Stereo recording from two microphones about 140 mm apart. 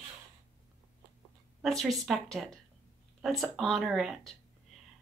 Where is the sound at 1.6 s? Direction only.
Centre (ahead or behind).